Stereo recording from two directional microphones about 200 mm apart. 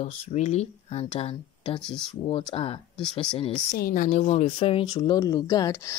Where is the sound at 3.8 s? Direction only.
45° left (ahead or behind).